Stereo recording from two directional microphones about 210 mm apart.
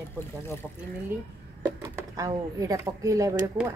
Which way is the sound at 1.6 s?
10° right (ahead or behind).